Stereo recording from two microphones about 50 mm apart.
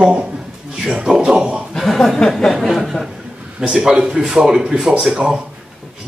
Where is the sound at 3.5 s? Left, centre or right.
Centre.